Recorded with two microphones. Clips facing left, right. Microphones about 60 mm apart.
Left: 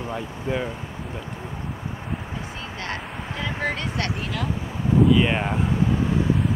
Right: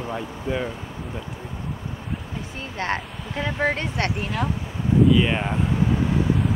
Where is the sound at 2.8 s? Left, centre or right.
Right.